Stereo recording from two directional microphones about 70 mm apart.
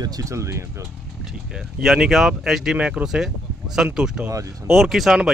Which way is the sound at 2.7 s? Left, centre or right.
Centre.